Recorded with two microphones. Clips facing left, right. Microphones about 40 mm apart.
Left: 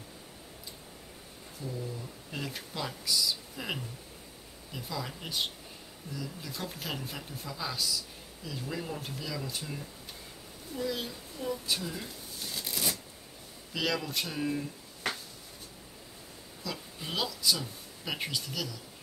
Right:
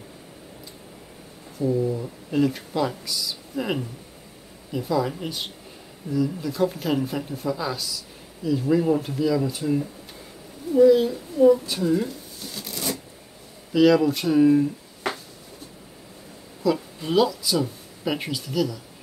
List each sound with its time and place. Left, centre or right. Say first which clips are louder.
1.6 s a woman's voice: right 16 dB; centre
11.6 s speech: right 12 dB; centre
12.4 s a sound: right 5 dB; centre
13.7 s speech: right 15 dB; centre
16.6 s speech: right 15 dB; centre